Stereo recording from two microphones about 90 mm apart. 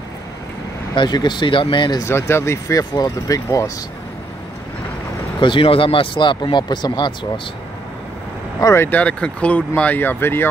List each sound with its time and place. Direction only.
0.9 s speech: 55° left (ahead or behind)
2.0 s speech: 30° left (ahead or behind)
2.8 s speech: 45° left (ahead or behind)
5.4 s speech: 70° left (ahead or behind)
8.5 s speech: 35° left (ahead or behind)
8.8 s speech: 15° left (ahead or behind)